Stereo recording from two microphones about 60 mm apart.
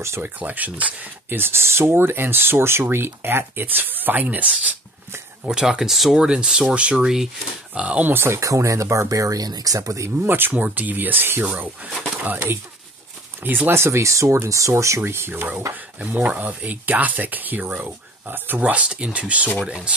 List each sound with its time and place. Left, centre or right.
0.2 s speech: right
5.4 s speech: centre
8.0 s speech: right
8.4 s speech: right
10.2 s speech: right
11.4 s speech: right
13.7 s speech: right
15.0 s speech: right
18.7 s speech: centre